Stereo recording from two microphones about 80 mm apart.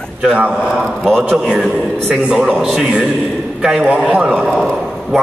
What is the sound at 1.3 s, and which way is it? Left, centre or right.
A man's voice, centre.